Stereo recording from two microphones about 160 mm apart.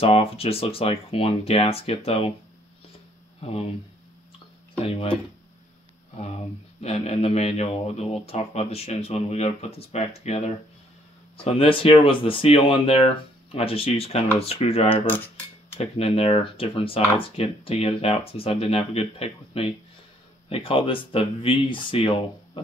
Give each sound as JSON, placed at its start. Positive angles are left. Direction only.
{"t": 0.0, "sound": "speech", "side_deg": 40}
{"t": 3.3, "sound": "speech", "side_deg": 40}
{"t": 4.7, "sound": "speech", "side_deg": 40}
{"t": 6.8, "sound": "speech", "side_deg": 45}
{"t": 11.4, "sound": "speech", "side_deg": 35}